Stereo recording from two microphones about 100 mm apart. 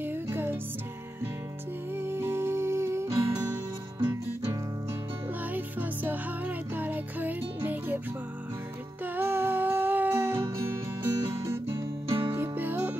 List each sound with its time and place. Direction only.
0.0 s music: 20° right (ahead or behind)
2.0 s music: 25° right (ahead or behind)
5.4 s music: 15° right (ahead or behind)
9.0 s music: 20° right (ahead or behind)
11.1 s guitar: 35° right (ahead or behind)
12.4 s music: 20° right (ahead or behind)